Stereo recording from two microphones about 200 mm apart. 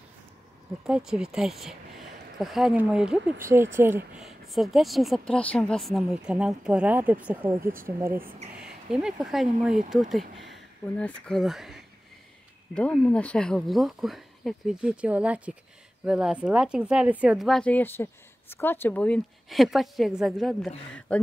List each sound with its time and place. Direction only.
0.8 s speech: 5° right (ahead or behind)
8.1 s speech: 45° right (ahead or behind)
8.5 s speech: 5° right (ahead or behind)